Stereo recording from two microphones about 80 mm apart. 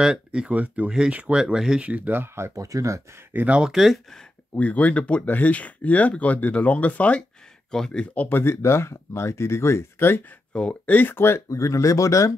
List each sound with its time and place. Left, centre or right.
0.0 s speech: centre; by 3.0 s right
3.3 s speech: centre
3.7 s speech: centre
4.6 s speech: centre
10.5 s speech: centre
10.9 s speech: left